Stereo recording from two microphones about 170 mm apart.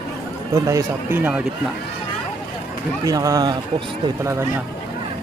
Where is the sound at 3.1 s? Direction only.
20° right (ahead or behind).